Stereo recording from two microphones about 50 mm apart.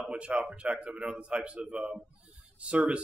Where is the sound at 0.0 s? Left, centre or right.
Centre.